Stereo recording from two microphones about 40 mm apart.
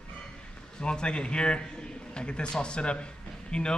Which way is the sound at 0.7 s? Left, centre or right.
Left.